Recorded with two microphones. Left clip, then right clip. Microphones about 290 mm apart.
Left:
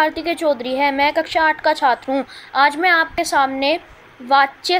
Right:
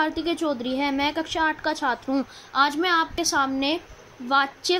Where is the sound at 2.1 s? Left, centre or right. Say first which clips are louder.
Left 6 dB; left.